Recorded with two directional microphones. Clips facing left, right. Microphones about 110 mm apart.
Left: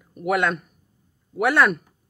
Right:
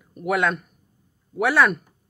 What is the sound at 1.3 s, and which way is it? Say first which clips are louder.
Speech: even; centre (ahead or behind).